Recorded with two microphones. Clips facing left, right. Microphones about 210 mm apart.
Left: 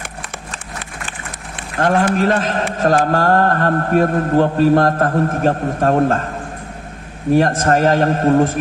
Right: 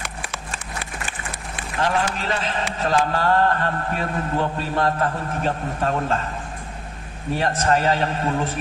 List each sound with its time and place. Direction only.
1.8 s a man's voice: 50° left (ahead or behind)
7.3 s a man's voice: 45° left (ahead or behind)